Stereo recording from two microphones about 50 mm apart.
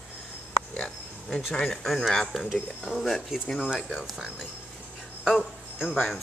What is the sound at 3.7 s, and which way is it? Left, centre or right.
Speech, centre.